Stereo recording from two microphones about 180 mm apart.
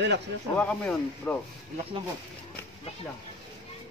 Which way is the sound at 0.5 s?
5° left (ahead or behind).